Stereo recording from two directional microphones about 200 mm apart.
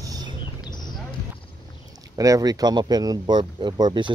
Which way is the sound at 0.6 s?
20° left (ahead or behind).